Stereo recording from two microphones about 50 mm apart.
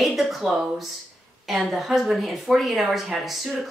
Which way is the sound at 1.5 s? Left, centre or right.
Centre.